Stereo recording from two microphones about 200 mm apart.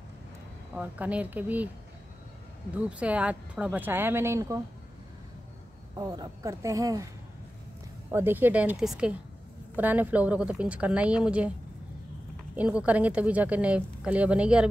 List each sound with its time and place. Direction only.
0.7 s speech: 5° right (ahead or behind)
2.7 s speech: 5° right (ahead or behind)
5.9 s speech: 20° right (ahead or behind)
8.1 s speech: 10° right (ahead or behind)
12.5 s speech: 5° right (ahead or behind)